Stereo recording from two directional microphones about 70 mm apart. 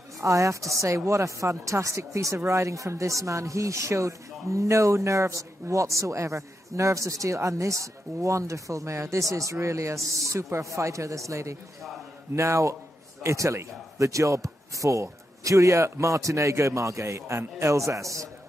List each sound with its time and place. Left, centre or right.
0.2 s speech: right